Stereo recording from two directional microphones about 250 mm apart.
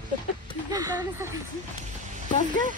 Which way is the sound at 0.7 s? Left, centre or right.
Centre.